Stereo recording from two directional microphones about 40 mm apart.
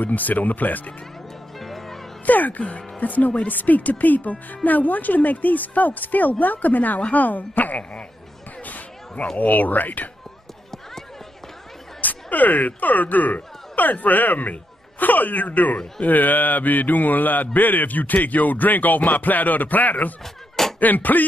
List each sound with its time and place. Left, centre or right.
0.0 s a woman's voice: left
1.6 s music: centre
2.2 s a woman's voice: left
8.6 s a sound: left
9.4 s a woman's voice: left
12.0 s a woman's voice: left